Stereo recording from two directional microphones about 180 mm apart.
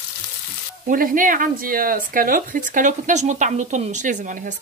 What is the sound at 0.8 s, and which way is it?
Speech, 50° right (ahead or behind).